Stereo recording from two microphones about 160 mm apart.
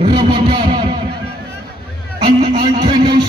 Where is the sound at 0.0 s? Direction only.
30° right (ahead or behind).